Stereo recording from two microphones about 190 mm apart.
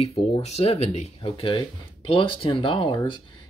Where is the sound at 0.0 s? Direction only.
30° left (ahead or behind).